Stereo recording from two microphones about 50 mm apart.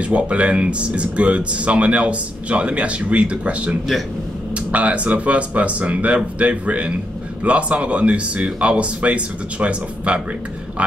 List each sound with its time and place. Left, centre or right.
0.1 s speech: right
4.7 s a man's voice: right